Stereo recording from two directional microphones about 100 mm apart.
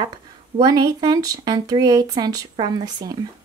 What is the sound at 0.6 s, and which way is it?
Speech, 45° right (ahead or behind).